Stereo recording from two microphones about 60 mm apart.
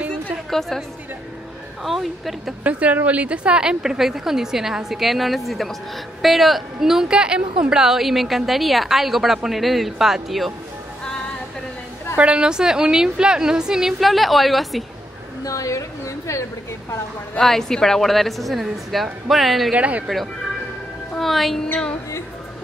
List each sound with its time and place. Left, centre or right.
0.1 s music: centre
1.9 s a woman's voice: centre
2.6 s a woman's voice: right; by 10.5 s centre
12.2 s a woman's voice: centre
15.4 s a woman's voice: left
17.4 s a woman's voice: centre
19.7 s speech: right
21.1 s a woman's voice: centre